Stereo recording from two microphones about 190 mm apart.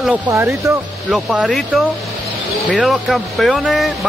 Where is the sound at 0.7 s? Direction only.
15° right (ahead or behind).